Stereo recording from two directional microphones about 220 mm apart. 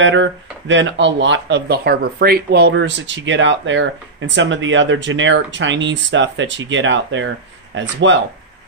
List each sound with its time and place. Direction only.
0.0 s speech: 55° right (ahead or behind)